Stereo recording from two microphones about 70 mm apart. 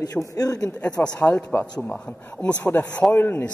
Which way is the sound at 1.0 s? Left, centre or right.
Left.